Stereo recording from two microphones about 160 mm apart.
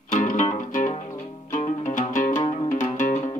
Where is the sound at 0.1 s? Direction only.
50° left (ahead or behind).